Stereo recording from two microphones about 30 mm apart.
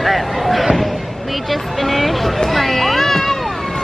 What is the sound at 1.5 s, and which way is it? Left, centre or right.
Music, centre.